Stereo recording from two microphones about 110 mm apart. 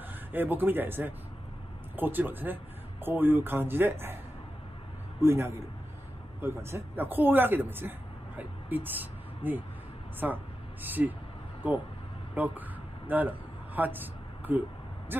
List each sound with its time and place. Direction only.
0.3 s speech: 15° right (ahead or behind)
5.2 s speech: 25° right (ahead or behind)
12.4 s a sound: 15° right (ahead or behind)